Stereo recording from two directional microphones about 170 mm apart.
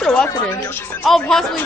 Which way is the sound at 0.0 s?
5° left (ahead or behind).